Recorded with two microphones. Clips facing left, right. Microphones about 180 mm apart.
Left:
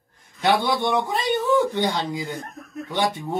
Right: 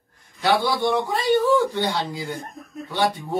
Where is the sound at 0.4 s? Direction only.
20° left (ahead or behind).